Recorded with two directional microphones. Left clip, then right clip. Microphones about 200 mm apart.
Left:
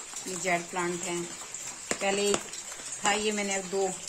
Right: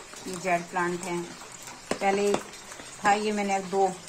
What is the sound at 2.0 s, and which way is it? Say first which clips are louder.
Speech: right 3 dB; 15° left (ahead or behind).